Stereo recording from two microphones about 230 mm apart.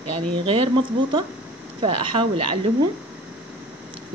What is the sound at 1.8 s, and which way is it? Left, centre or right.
Speech, right.